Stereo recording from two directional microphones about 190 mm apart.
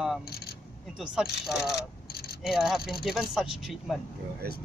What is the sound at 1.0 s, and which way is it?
Speech, 5° right (ahead or behind).